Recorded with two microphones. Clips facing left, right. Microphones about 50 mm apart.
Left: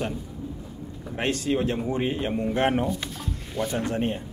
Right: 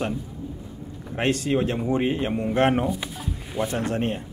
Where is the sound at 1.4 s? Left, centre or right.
Centre.